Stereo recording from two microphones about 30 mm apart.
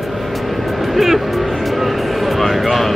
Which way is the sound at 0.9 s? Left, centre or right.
Centre.